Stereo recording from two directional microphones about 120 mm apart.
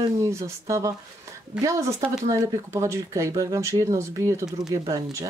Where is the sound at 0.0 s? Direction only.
25° right (ahead or behind).